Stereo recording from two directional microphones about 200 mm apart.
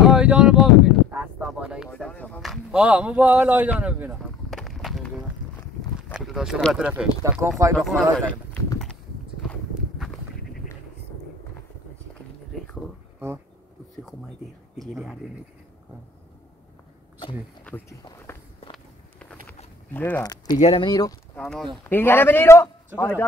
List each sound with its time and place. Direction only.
0.1 s a sound: 5° right (ahead or behind)
1.1 s speech: 5° right (ahead or behind)
1.9 s speech: 5° left (ahead or behind); by 7.7 s 15° right (ahead or behind)
7.7 s speech: 5° left (ahead or behind)
9.5 s walk: centre (ahead or behind)
14.8 s speech: centre (ahead or behind)
17.6 s speech: 10° left (ahead or behind)
18.0 s walk: 10° left (ahead or behind)
18.7 s a sound: 5° left (ahead or behind)
20.5 s speech: 35° left (ahead or behind)
20.8 s speech: 20° left (ahead or behind)
21.4 s speech: centre (ahead or behind)